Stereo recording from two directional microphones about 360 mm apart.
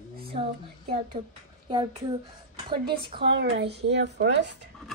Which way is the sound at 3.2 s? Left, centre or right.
Right.